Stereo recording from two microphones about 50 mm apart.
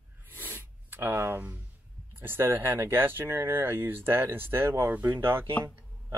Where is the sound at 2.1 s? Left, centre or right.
Right.